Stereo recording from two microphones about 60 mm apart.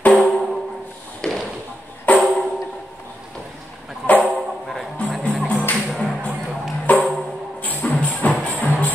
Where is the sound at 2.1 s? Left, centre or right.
Left.